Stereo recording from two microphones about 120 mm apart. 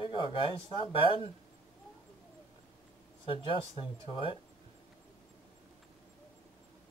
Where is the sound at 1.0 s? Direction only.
45° left (ahead or behind).